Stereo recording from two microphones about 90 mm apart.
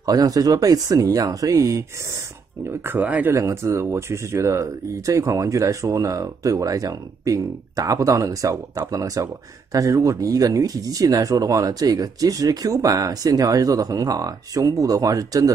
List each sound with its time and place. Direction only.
0.0 s speech: 45° right (ahead or behind)
2.8 s speech: 20° right (ahead or behind)
3.3 s speech: 35° right (ahead or behind)